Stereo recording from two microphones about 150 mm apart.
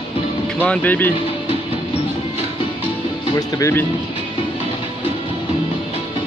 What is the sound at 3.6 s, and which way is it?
Speech, 15° left (ahead or behind).